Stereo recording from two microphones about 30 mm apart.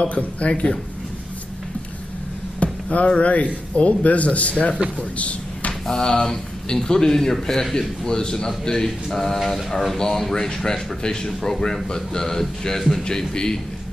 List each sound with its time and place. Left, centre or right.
0.1 s a man's voice: left
2.6 s a sound: left
3.2 s a man's voice: left
5.1 s a sound: left
5.9 s speech: centre
8.6 s speech: centre
9.9 s speech: centre
13.3 s speech: left